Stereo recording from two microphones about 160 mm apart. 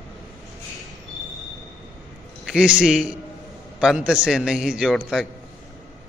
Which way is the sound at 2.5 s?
5° right (ahead or behind).